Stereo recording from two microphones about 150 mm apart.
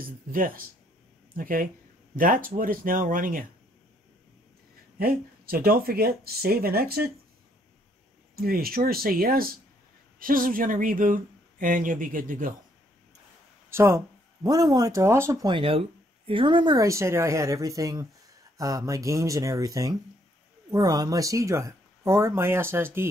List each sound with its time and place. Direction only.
0.0 s speech: 70° right (ahead or behind)
4.9 s speech: 80° right
8.4 s speech: 90° right
10.1 s speech: 70° right (ahead or behind)
13.7 s speech: 15° right (ahead or behind)
15.4 s speech: 35° right (ahead or behind); by 23.0 s 15° right (ahead or behind)